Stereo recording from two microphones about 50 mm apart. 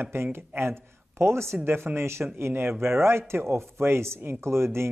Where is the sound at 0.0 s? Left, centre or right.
Right.